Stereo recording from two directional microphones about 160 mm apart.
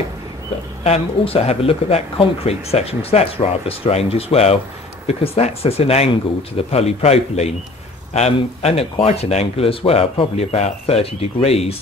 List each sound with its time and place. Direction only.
0.8 s speech: 40° left (ahead or behind)